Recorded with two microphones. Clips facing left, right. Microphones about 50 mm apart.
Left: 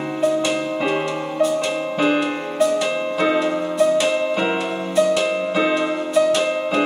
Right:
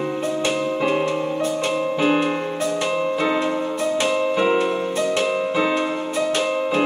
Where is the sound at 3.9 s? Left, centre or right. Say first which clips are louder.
Left 1 dB; right.